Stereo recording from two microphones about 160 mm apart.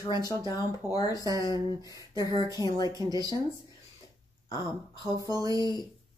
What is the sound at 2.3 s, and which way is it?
Speech, 25° left (ahead or behind).